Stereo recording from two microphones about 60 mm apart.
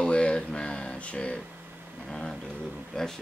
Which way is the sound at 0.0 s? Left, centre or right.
Centre.